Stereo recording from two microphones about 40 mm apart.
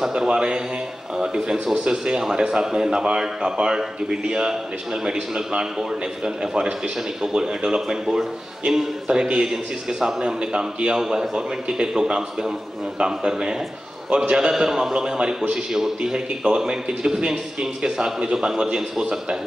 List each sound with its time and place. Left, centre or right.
0.0 s a man's voice: centre
0.3 s a man's voice: right